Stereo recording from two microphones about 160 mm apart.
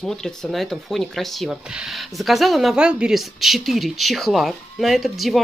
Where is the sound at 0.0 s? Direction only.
5° left (ahead or behind).